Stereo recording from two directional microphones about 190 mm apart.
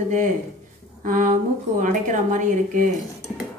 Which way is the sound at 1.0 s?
45° right (ahead or behind).